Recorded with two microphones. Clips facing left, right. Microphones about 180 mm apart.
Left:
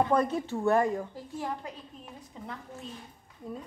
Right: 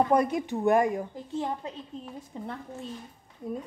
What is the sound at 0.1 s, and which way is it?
A woman's voice, 15° right (ahead or behind).